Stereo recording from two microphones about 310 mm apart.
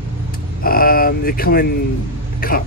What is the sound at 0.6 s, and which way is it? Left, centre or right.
Speech, left.